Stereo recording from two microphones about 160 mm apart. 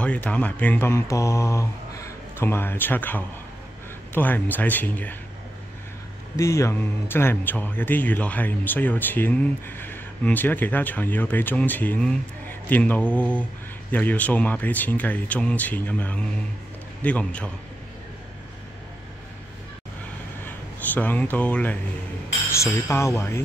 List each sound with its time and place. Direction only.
0.0 s speech: 10° left (ahead or behind)
6.3 s speech: 20° left (ahead or behind)
20.4 s speech: 10° left (ahead or behind)